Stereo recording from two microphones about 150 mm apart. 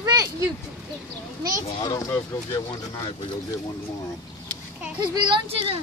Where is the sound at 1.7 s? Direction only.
25° left (ahead or behind).